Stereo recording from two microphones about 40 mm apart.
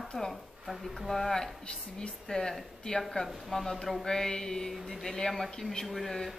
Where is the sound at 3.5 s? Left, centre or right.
Centre.